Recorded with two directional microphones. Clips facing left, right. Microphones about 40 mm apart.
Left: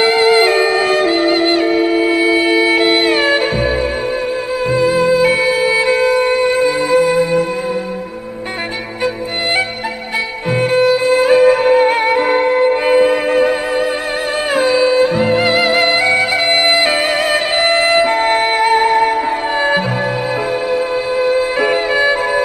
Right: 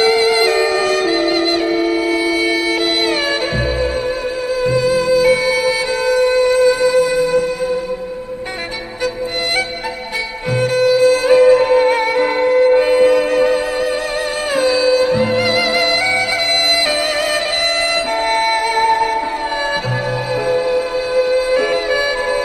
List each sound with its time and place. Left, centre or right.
0.0 s music: left
4.6 s music: left
10.6 s music: left
14.5 s music: left
21.2 s music: left